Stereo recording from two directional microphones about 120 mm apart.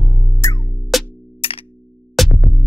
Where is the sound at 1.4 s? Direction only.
50° left (ahead or behind).